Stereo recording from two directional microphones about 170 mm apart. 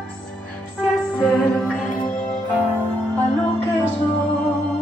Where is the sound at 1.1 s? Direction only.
5° left (ahead or behind).